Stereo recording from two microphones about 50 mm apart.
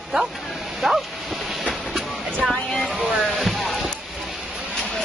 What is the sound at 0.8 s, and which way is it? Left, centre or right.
Dog, centre.